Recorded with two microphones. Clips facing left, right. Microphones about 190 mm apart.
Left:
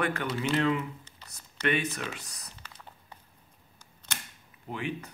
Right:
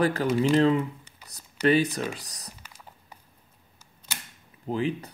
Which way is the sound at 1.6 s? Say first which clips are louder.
Right 7 dB; 35° right (ahead or behind).